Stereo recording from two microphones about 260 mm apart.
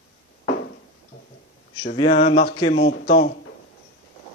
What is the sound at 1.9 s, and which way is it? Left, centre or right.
Speech, left.